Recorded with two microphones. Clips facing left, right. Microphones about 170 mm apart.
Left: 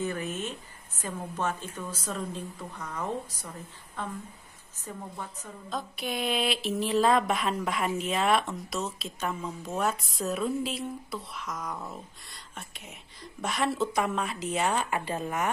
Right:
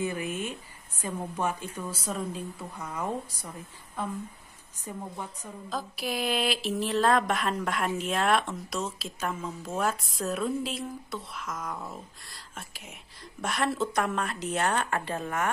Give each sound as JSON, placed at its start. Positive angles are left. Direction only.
{"t": 0.0, "sound": "a woman's voice", "side_deg": -10}
{"t": 5.7, "sound": "speech", "side_deg": 0}